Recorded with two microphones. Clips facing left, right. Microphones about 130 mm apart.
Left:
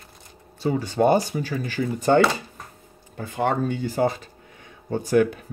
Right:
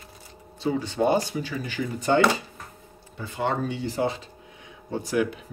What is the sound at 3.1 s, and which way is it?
Speech, 50° left (ahead or behind).